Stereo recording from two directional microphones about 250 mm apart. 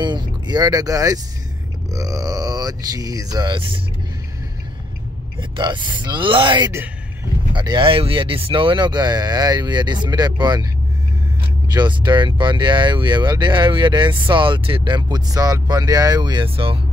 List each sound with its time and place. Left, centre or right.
0.0 s a sound: centre
1.9 s speech: centre
5.4 s speech: centre
11.7 s speech: centre